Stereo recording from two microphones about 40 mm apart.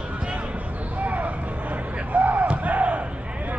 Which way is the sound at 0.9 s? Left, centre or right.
Right.